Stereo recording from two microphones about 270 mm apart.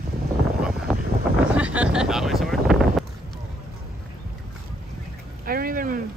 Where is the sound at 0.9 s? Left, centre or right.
Centre.